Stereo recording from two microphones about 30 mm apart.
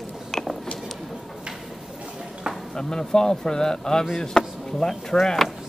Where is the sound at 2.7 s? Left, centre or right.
Left.